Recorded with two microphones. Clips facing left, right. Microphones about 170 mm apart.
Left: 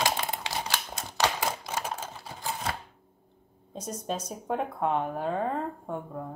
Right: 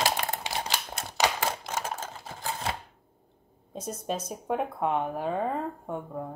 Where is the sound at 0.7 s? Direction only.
10° right (ahead or behind).